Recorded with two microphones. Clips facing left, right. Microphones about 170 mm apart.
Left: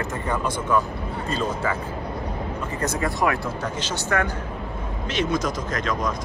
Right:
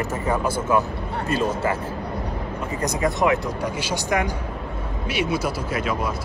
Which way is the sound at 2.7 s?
15° right (ahead or behind).